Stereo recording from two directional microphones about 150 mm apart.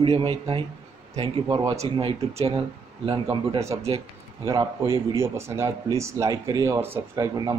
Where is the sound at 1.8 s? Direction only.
40° right (ahead or behind).